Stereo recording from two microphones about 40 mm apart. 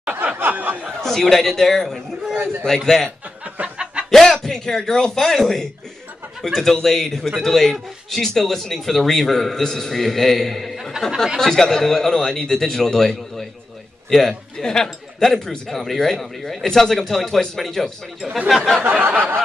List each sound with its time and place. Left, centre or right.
0.0 s a sound: right
0.4 s snicker: right
1.0 s speech: centre
2.3 s a man's voice: right
2.6 s speech: centre
3.7 s chicken: right
4.0 s speech: centre
18.8 s a sound: right